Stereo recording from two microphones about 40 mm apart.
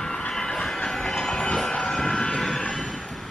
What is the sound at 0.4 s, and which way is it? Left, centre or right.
Train, centre.